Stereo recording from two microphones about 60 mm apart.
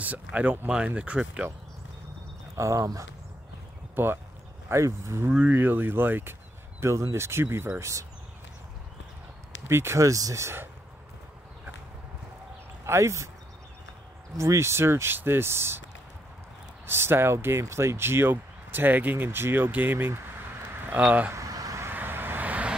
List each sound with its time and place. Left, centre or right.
0.0 s speech: right
2.5 s speech: right
3.9 s speech: right
5.5 s speech: right
6.8 s speech: right
9.7 s speech: right
9.9 s speech: right
12.8 s speech: right
14.3 s speech: right
16.8 s speech: right
21.3 s a sound: right
21.9 s vehicle: right